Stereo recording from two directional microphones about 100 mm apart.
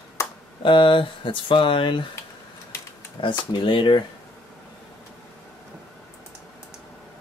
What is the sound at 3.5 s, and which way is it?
Speech, 55° left (ahead or behind).